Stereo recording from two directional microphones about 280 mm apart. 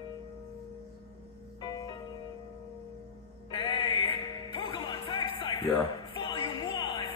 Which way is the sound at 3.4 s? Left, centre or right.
Centre.